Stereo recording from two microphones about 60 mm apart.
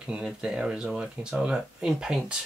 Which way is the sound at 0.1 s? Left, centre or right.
Centre.